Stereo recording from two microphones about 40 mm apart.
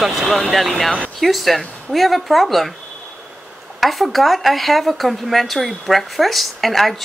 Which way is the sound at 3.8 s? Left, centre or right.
Centre.